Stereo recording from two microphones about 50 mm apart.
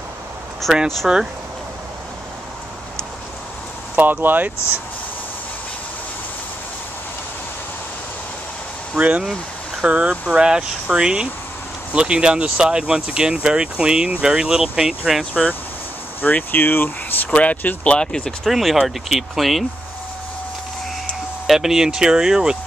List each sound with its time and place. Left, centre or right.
0.6 s speech: centre
1.0 s speech: centre
3.9 s speech: right
8.9 s speech: right; by 15.2 s centre
16.2 s speech: left
17.3 s speech: left
17.9 s speech: centre
18.4 s speech: centre
21.5 s speech: centre